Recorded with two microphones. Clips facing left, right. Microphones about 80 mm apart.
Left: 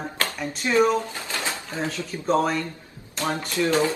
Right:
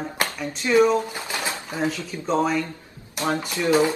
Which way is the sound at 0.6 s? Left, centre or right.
Centre.